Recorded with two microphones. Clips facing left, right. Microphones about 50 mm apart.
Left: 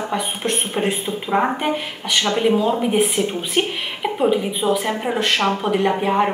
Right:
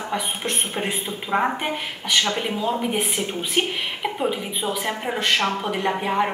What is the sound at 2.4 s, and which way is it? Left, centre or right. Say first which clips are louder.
Speech: left 7 dB; centre.